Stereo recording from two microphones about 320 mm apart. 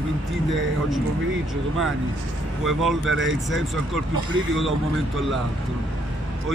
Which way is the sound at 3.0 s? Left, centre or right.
Right.